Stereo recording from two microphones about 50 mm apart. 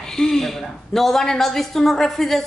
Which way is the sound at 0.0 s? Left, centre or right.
Centre.